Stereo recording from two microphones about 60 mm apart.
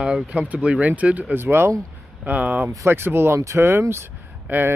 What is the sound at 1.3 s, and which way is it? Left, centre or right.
Speech, right.